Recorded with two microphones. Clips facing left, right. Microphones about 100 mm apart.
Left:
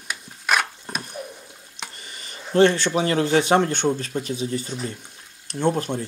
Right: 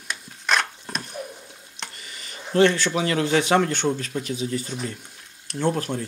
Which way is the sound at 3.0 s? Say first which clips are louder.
Left 4 dB; 35° left (ahead or behind).